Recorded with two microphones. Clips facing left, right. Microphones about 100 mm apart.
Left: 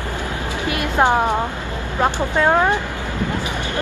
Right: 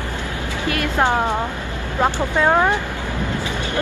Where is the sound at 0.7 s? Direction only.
20° left (ahead or behind).